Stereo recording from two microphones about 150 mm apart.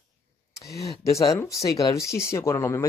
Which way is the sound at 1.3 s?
20° left (ahead or behind).